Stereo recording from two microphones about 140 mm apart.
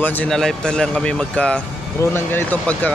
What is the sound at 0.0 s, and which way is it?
Speech, 10° left (ahead or behind).